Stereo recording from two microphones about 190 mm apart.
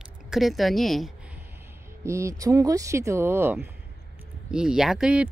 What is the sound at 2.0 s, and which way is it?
Speech, 15° right (ahead or behind).